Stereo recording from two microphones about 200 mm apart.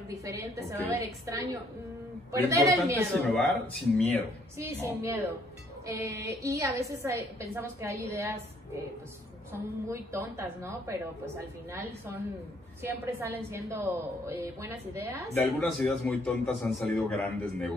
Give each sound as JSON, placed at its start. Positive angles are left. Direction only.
{"t": 0.1, "sound": "a woman's voice", "side_deg": -15}
{"t": 3.3, "sound": "a man's voice", "side_deg": 0}
{"t": 4.6, "sound": "a woman's voice", "side_deg": -15}
{"t": 15.3, "sound": "a man's voice", "side_deg": 5}